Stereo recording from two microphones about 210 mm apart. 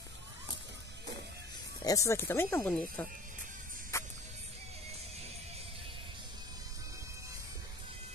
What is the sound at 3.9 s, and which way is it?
Music, 15° left (ahead or behind).